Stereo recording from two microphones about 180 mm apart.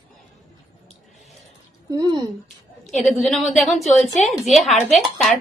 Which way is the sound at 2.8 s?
Centre (ahead or behind).